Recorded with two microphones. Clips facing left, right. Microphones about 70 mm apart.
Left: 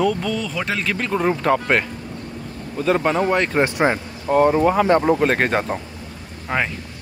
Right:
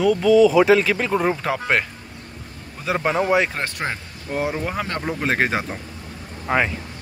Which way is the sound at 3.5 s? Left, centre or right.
Left.